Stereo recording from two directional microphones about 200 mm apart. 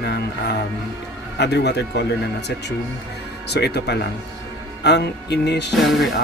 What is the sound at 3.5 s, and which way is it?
Speech, 55° left (ahead or behind).